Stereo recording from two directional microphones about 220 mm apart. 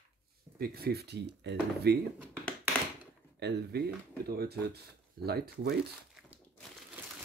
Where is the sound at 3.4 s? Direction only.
45° right (ahead or behind).